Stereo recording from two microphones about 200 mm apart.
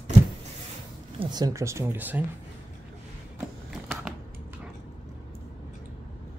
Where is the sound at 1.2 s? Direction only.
20° right (ahead or behind).